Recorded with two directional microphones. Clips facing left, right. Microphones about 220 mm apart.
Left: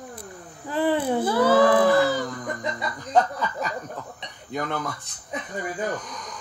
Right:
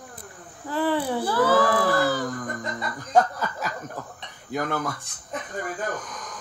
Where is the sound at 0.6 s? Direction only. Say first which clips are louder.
Left 2 dB; 15° left (ahead or behind).